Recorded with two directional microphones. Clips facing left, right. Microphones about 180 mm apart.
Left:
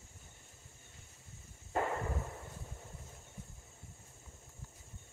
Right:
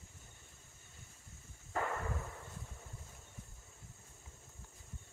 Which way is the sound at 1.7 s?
25° left (ahead or behind).